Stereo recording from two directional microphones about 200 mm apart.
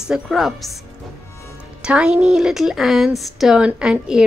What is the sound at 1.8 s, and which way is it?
A woman's voice, 5° right (ahead or behind).